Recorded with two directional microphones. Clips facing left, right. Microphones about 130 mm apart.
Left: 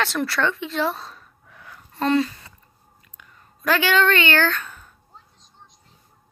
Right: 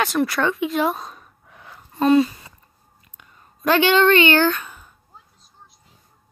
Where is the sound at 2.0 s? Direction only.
15° right (ahead or behind).